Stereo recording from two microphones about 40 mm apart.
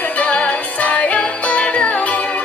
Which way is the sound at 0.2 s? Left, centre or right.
Left.